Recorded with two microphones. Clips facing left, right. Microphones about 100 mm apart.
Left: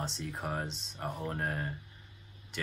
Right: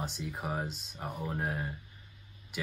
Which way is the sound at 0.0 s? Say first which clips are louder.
Even; 5° right (ahead or behind).